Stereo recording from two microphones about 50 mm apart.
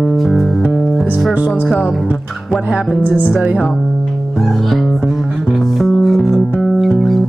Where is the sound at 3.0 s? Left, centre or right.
Left.